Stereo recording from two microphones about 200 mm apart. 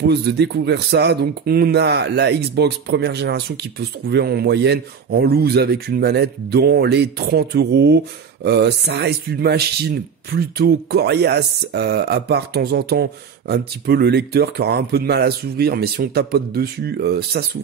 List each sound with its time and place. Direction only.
0.0 s speech: 55° right (ahead or behind)